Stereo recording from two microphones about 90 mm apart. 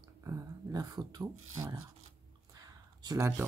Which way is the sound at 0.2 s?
35° right (ahead or behind).